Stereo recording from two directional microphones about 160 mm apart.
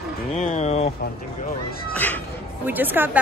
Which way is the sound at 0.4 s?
45° left (ahead or behind).